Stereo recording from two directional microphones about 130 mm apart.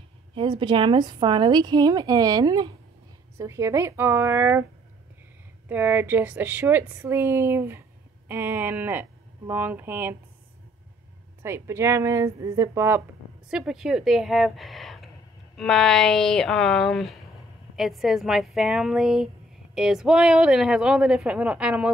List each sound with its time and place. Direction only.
0.3 s a woman's voice: 40° right (ahead or behind); by 4.6 s 20° right (ahead or behind)
5.7 s a woman's voice: 15° right (ahead or behind)
11.4 s a woman's voice: 20° right (ahead or behind)
13.5 s a woman's voice: 5° right (ahead or behind)